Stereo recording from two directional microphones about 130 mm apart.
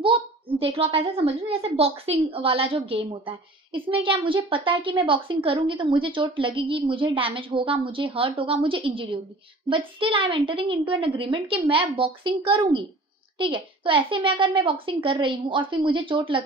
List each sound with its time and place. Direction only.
0.0 s a woman's voice: 45° right (ahead or behind)